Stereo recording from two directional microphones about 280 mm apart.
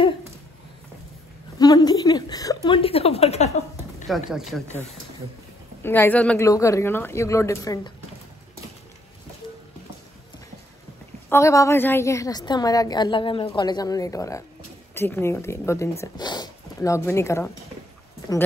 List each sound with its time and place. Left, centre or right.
1.6 s a sound: centre
4.3 s speech: centre
5.8 s a woman's voice: centre
11.2 s a woman's voice: centre